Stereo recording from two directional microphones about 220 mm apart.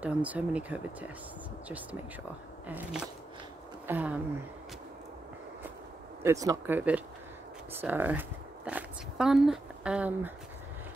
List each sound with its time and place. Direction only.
0.0 s speech: 5° right (ahead or behind)
3.8 s speech: 5° right (ahead or behind)
6.2 s speech: 15° right (ahead or behind)